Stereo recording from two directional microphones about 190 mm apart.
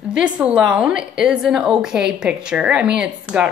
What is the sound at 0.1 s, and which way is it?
A woman's voice, 5° right (ahead or behind).